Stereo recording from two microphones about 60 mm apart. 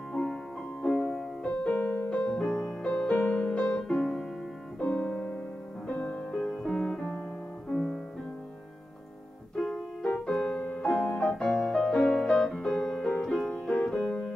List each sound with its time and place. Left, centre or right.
0.1 s music: centre
1.4 s music: centre
1.7 s music: left
2.0 s music: centre
4.7 s piano: centre
5.9 s music: left; by 8.0 s centre
9.6 s music: centre